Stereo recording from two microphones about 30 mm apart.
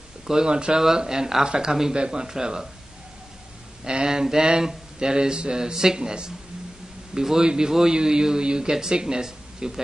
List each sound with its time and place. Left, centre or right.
0.5 s speech: right
0.7 s speech: centre
3.8 s speech: right